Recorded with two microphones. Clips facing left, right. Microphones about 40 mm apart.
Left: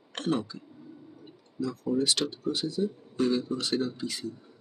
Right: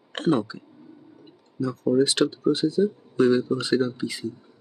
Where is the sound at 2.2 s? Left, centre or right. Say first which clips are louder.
Right 9 dB; centre.